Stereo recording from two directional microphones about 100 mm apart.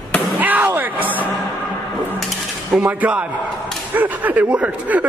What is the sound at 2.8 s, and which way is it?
Speech, 15° right (ahead or behind).